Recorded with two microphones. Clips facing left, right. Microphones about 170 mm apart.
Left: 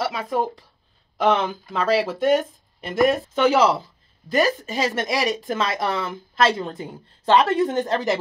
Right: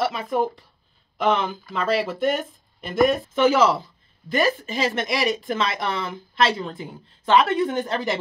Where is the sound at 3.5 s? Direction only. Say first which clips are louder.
Left 1 dB; 30° left (ahead or behind).